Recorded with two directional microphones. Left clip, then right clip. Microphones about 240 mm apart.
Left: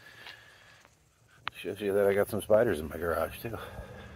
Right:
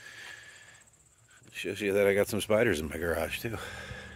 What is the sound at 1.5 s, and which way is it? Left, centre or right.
Speech, right.